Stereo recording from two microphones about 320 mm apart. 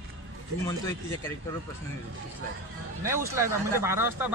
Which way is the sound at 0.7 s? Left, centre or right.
Centre.